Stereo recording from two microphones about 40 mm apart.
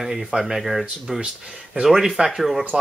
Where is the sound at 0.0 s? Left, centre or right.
Centre.